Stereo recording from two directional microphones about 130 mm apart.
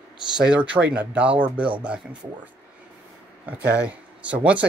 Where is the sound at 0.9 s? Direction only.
10° right (ahead or behind).